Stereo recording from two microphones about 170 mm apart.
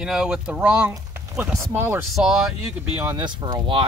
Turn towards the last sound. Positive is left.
turn(degrees=-30)  # may be behind; listen again after turning